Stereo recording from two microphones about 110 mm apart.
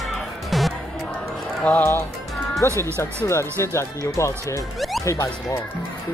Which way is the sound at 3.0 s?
25° left (ahead or behind).